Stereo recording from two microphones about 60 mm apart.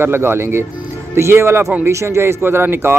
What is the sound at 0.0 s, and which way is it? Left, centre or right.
A man's voice, right.